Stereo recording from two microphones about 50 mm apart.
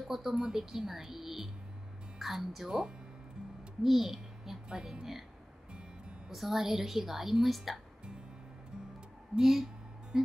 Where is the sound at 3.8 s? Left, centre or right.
Centre.